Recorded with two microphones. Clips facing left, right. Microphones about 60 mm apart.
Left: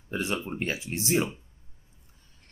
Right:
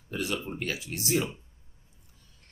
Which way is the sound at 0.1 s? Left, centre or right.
Left.